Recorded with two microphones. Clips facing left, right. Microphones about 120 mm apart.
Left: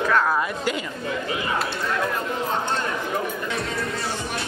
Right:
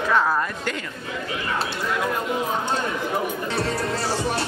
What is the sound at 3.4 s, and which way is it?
Music, 35° right (ahead or behind).